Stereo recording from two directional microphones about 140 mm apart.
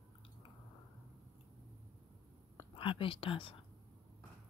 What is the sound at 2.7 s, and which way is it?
Speech, 40° left (ahead or behind).